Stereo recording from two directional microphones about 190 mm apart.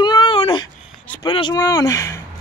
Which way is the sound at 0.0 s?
25° left (ahead or behind).